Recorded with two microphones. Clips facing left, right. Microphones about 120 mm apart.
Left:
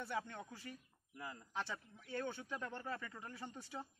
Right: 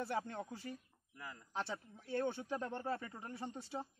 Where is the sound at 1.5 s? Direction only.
30° right (ahead or behind).